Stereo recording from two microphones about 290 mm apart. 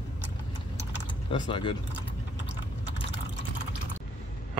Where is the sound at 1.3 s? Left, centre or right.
Centre.